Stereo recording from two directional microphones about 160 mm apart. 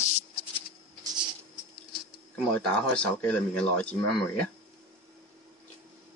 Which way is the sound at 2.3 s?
10° left (ahead or behind).